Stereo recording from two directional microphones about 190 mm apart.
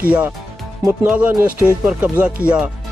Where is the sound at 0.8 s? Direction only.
10° right (ahead or behind).